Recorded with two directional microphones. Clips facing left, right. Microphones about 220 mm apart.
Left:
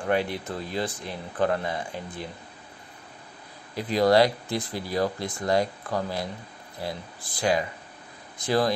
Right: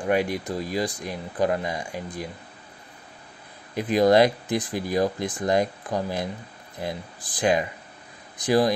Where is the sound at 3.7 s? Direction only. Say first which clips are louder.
Right 2 dB; 20° right (ahead or behind).